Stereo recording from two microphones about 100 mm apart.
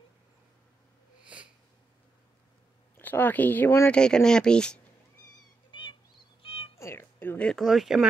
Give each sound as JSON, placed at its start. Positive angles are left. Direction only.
{"t": 1.2, "sound": "snort", "side_deg": -10}
{"t": 3.0, "sound": "speech", "side_deg": 20}
{"t": 3.9, "sound": "speech", "side_deg": 10}
{"t": 5.7, "sound": "bird", "side_deg": 55}
{"t": 6.4, "sound": "cat", "side_deg": 70}
{"t": 6.8, "sound": "cat", "side_deg": 25}
{"t": 7.4, "sound": "speech", "side_deg": 0}